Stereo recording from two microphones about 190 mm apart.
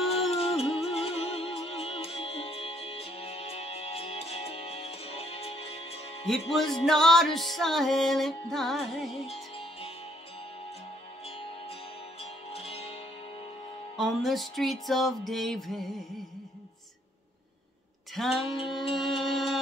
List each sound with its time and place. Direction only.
0.3 s music: 30° left (ahead or behind)
6.5 s music: centre (ahead or behind)
9.1 s music: 30° left (ahead or behind)
11.2 s music: 30° left (ahead or behind)
13.9 s music: centre (ahead or behind)
18.2 s music: centre (ahead or behind)